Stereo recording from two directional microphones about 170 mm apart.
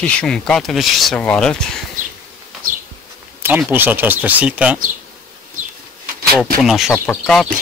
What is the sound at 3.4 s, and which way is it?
Speech, 10° right (ahead or behind).